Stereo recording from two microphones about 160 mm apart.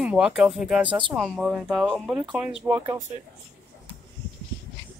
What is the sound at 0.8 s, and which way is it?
Speech, 30° right (ahead or behind).